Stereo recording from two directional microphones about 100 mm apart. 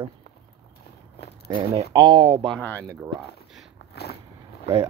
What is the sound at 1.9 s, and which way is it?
Speech, 50° right (ahead or behind).